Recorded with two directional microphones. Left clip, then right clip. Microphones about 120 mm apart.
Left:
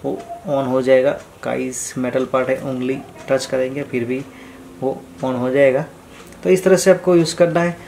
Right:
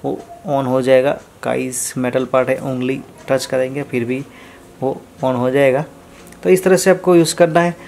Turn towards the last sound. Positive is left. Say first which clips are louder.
# right 3 dB
turn(degrees=-40)  # may be behind; listen again after turning